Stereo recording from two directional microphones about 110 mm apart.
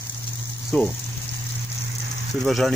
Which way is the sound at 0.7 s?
15° left (ahead or behind).